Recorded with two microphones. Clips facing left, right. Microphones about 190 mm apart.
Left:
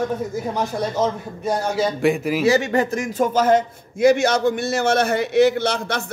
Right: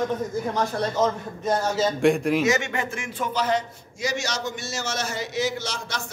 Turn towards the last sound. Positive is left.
turn(degrees=60)  # may be behind; listen again after turning